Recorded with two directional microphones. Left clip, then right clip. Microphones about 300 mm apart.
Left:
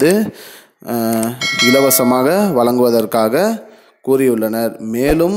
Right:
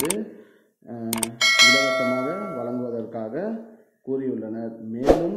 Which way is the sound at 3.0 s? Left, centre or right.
Left.